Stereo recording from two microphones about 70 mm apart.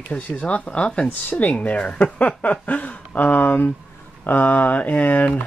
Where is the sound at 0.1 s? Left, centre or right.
Left.